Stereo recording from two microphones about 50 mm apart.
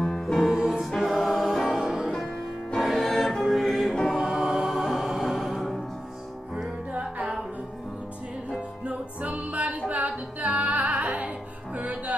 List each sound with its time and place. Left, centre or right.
0.0 s music: centre
0.9 s music: centre
2.8 s music: centre
3.9 s choir: centre
4.2 s music: centre
6.9 s music: right
8.8 s music: right